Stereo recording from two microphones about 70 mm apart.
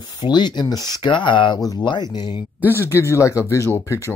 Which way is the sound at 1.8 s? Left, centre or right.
Left.